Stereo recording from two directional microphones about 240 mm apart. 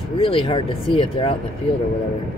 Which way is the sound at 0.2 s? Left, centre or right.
Left.